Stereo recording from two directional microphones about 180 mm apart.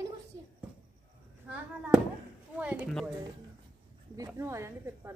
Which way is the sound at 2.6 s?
10° right (ahead or behind).